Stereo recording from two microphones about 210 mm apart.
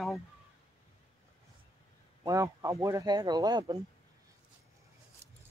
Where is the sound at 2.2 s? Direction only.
15° right (ahead or behind).